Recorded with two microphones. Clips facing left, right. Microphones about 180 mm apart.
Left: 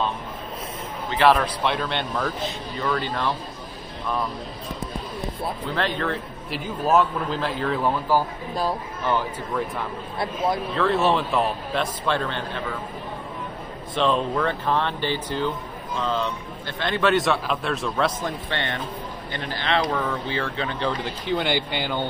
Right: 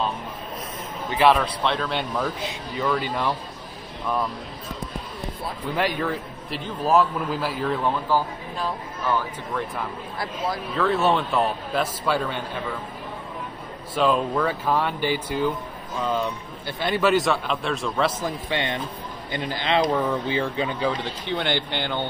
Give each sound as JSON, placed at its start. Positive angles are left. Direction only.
{"t": 1.1, "sound": "a man's voice", "side_deg": -5}
{"t": 5.8, "sound": "a man's voice", "side_deg": -10}
{"t": 8.1, "sound": "speech", "side_deg": 10}
{"t": 9.5, "sound": "a man's voice", "side_deg": 0}
{"t": 10.1, "sound": "a man's voice", "side_deg": 25}
{"t": 10.7, "sound": "a man's voice", "side_deg": 0}
{"t": 13.9, "sound": "a man's voice", "side_deg": -5}
{"t": 18.5, "sound": "speech", "side_deg": -15}
{"t": 21.0, "sound": "speech", "side_deg": 5}